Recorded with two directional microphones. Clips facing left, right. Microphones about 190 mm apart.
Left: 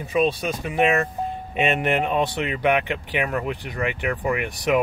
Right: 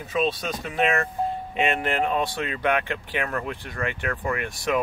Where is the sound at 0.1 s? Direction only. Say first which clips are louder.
Left 4 dB; 15° left (ahead or behind).